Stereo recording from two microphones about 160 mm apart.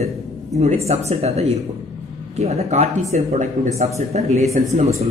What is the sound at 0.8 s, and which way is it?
A man's voice, 40° right (ahead or behind).